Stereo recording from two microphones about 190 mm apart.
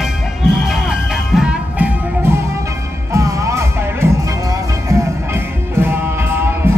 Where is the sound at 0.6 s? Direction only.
Centre (ahead or behind).